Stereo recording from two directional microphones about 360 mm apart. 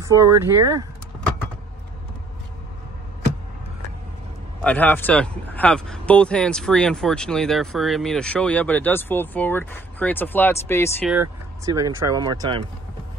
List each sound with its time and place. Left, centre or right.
0.0 s speech: centre
4.6 s speech: centre
11.1 s speech: centre